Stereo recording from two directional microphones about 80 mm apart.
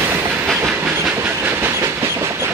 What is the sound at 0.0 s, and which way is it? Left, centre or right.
Train, right.